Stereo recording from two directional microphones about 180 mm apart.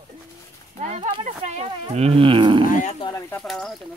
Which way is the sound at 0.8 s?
40° right (ahead or behind).